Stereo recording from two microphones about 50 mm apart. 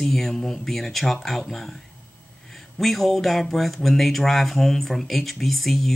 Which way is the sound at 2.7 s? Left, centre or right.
Centre.